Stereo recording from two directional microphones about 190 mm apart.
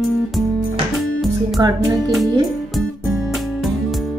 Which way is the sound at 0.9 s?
Centre (ahead or behind).